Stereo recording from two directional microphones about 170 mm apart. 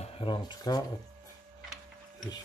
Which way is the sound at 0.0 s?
30° left (ahead or behind).